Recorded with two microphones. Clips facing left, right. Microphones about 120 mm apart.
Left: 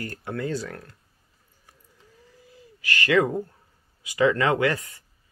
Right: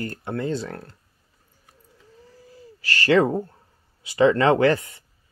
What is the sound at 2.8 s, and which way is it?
Speech, 35° right (ahead or behind).